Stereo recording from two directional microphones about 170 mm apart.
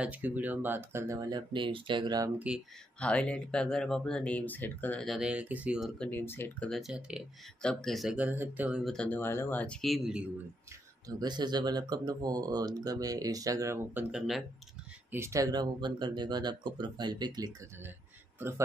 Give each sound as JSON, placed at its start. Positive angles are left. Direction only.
{"t": 0.0, "sound": "speech", "side_deg": -10}
{"t": 2.3, "sound": "speech", "side_deg": -5}
{"t": 3.0, "sound": "speech", "side_deg": 5}
{"t": 5.9, "sound": "speech", "side_deg": 10}
{"t": 6.7, "sound": "speech", "side_deg": -5}
{"t": 11.1, "sound": "speech", "side_deg": -25}
{"t": 14.1, "sound": "speech", "side_deg": 0}
{"t": 15.0, "sound": "speech", "side_deg": -15}